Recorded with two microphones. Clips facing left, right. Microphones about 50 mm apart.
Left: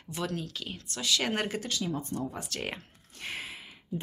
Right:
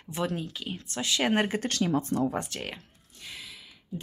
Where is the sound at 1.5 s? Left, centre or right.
Right.